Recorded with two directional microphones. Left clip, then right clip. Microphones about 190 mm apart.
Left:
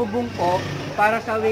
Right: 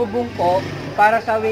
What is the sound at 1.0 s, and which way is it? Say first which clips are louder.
Speech: right 5 dB; 5° left (ahead or behind).